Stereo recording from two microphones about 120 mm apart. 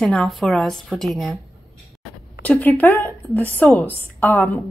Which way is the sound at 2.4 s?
15° left (ahead or behind).